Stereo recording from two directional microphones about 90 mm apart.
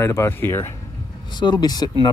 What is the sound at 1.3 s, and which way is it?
Speech, 55° left (ahead or behind).